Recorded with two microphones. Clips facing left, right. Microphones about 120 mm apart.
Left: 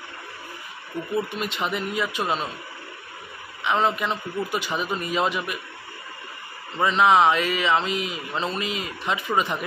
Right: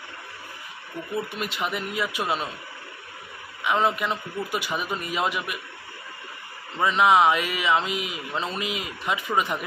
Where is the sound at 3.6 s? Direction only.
10° right (ahead or behind).